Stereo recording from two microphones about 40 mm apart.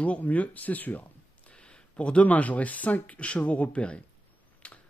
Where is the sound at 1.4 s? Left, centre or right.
Left.